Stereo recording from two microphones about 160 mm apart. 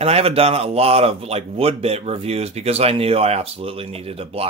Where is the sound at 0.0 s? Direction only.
40° right (ahead or behind).